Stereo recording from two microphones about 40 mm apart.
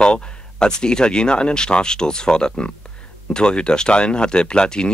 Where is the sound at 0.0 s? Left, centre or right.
Centre.